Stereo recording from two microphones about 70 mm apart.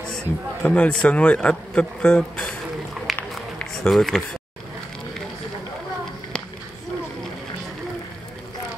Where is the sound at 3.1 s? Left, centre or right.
Centre.